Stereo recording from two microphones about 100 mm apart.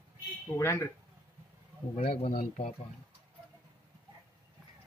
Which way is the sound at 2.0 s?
85° left.